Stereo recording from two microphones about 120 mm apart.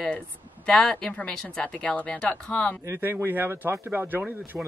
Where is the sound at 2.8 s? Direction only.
20° right (ahead or behind).